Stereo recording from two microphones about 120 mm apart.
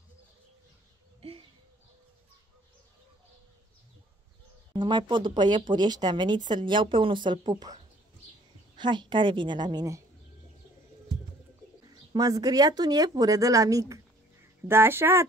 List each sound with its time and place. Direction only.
1.2 s a sound: 65° right (ahead or behind)
4.7 s speech: 40° right (ahead or behind)
11.9 s speech: 35° right (ahead or behind)